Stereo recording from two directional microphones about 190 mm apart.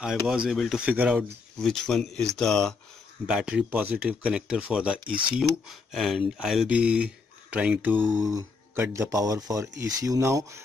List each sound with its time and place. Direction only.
0.0 s speech: 5° right (ahead or behind)